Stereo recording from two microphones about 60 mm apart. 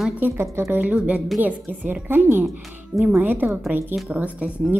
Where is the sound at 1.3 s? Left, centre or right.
Right.